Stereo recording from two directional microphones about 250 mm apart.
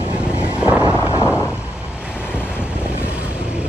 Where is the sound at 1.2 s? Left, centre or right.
Centre.